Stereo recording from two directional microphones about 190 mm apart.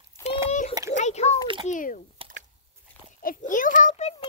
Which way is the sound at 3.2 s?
45° left (ahead or behind).